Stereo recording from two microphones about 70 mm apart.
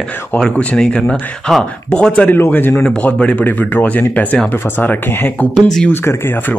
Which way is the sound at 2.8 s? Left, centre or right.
Centre.